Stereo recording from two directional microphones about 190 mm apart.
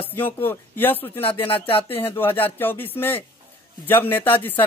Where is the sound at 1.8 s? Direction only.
10° left (ahead or behind).